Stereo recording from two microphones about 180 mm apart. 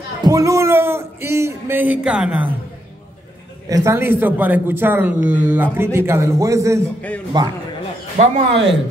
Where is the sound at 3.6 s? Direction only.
15° right (ahead or behind).